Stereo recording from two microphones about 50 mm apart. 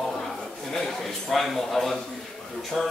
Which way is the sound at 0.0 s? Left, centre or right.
Centre.